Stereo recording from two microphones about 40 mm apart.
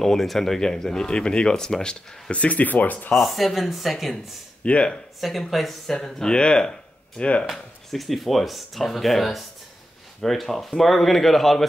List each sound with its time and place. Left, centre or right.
0.0 s speech: centre
2.3 s speech: left
3.2 s speech: centre
4.6 s speech: left
5.5 s speech: centre
5.9 s speech: centre
7.4 s speech: centre